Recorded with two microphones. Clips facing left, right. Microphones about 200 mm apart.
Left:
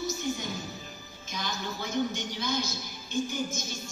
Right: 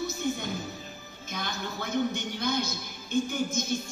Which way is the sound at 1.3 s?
55° right (ahead or behind).